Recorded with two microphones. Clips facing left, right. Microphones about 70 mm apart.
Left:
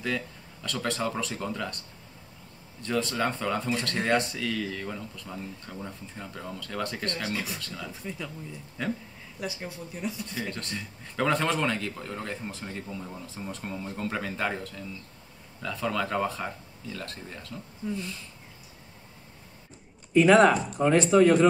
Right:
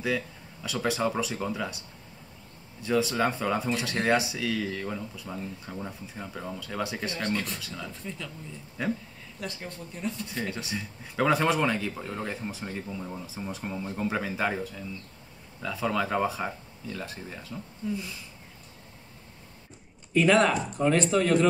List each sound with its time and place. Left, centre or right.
0.0 s speech: centre
7.9 s speech: centre
8.8 s speech: centre
9.4 s speech: centre
20.2 s speech: centre